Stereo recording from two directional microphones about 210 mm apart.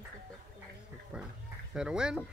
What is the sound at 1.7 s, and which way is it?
Speech, 5° right (ahead or behind).